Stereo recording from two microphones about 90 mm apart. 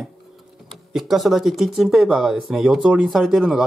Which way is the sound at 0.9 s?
5° right (ahead or behind).